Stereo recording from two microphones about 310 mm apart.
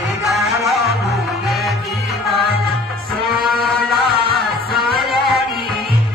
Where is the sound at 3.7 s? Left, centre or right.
Centre.